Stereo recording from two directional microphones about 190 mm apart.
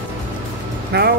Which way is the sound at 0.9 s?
60° right (ahead or behind).